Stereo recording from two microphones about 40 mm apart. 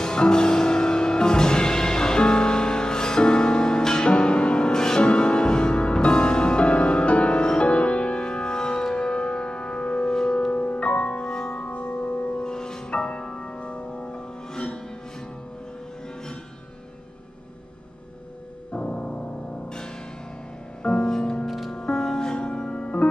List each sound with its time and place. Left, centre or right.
0.0 s music: centre; by 12.4 s left
12.4 s music: centre
18.7 s music: left
20.8 s music: left
21.5 s music: centre
21.7 s music: centre